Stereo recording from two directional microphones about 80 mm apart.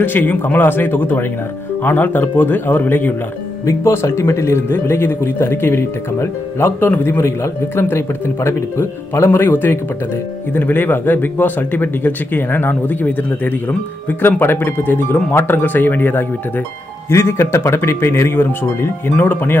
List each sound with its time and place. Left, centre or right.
0.0 s speech: left
3.6 s speech: left